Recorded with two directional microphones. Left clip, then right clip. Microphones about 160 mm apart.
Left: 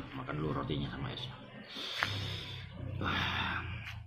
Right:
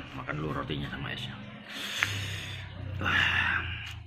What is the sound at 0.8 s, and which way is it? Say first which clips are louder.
Speech: right 5 dB; 5° right (ahead or behind).